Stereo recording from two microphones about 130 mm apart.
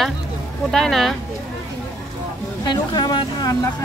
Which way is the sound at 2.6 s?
35° left (ahead or behind).